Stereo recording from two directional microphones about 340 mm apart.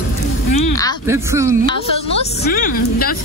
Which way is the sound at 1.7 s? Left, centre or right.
Centre.